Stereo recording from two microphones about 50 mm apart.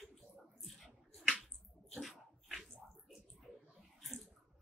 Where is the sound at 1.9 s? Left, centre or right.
Centre.